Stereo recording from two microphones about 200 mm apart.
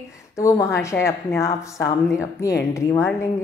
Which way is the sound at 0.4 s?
15° left (ahead or behind).